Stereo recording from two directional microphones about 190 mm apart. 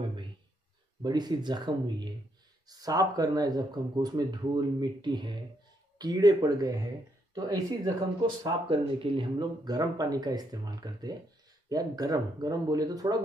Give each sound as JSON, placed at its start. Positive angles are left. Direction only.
{"t": 1.0, "sound": "speech", "side_deg": -20}